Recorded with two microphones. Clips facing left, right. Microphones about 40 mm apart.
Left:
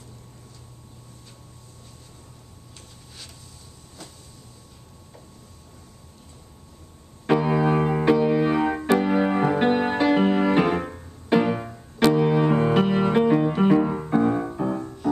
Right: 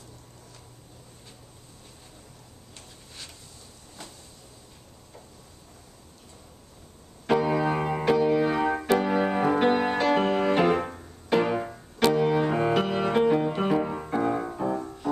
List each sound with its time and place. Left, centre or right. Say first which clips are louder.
7.2 s music: left 3 dB; centre
14.6 s music: left 2 dB; centre